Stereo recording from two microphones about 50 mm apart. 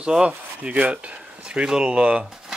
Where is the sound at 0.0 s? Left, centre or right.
Centre.